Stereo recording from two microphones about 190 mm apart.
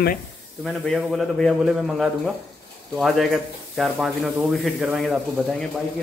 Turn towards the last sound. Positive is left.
turn(degrees=0)  # may be behind; listen again after turning